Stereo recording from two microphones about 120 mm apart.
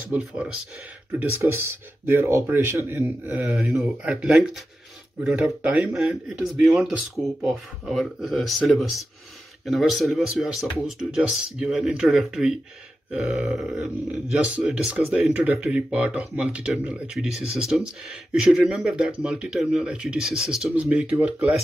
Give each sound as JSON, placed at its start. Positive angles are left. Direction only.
{"t": 0.1, "sound": "speech", "side_deg": -5}
{"t": 1.1, "sound": "speech", "side_deg": -20}